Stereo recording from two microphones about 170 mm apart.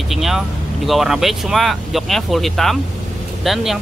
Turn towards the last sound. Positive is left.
turn(degrees=0)  # may be behind; listen again after turning